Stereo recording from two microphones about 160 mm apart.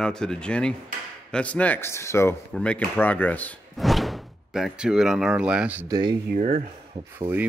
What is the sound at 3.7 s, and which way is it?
Speech, centre (ahead or behind).